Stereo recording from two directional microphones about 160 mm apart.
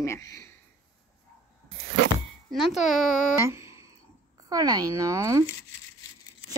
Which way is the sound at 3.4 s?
15° right (ahead or behind).